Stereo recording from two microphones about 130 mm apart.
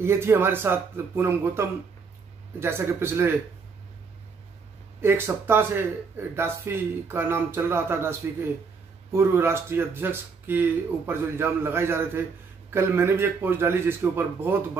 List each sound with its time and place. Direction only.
0.0 s speech: 20° right (ahead or behind)
5.0 s speech: 20° right (ahead or behind)